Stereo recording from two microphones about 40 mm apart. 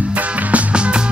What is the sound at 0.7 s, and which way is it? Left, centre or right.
Music, right.